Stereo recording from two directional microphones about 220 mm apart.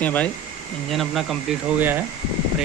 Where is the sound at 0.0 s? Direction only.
5° left (ahead or behind).